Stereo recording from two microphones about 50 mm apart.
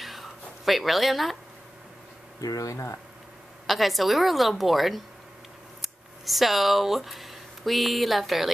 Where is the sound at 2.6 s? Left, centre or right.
Left.